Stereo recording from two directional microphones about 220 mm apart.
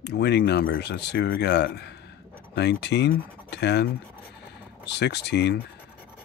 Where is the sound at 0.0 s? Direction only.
50° left (ahead or behind).